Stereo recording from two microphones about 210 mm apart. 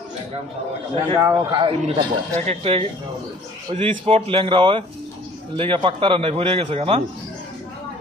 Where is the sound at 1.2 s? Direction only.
15° right (ahead or behind).